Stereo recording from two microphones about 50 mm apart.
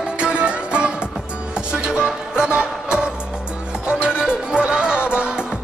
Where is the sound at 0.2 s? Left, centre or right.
Right.